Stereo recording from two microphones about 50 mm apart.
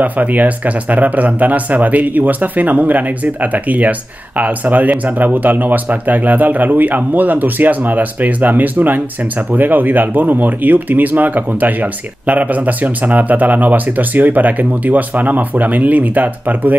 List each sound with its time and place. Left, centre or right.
0.0 s speech: right